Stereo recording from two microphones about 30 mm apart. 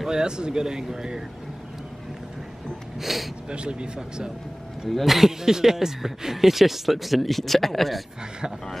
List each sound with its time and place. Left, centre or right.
0.0 s speech: right
3.0 s speech: centre
3.4 s speech: right
5.0 s speech: centre
5.4 s speech: centre